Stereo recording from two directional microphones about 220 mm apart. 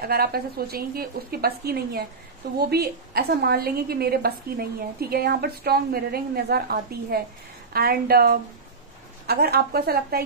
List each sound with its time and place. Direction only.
0.0 s a woman's voice: 45° right (ahead or behind)